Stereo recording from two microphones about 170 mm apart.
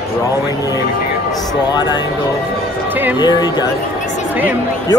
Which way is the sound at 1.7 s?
25° left (ahead or behind).